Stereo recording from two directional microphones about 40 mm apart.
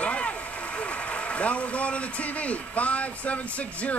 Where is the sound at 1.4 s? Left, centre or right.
Left.